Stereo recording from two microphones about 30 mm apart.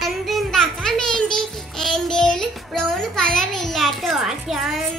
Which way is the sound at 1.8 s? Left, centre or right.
Centre.